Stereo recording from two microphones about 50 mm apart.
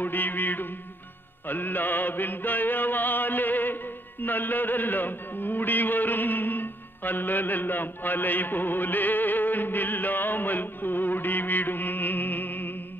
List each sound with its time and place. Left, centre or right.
0.0 s mantra: left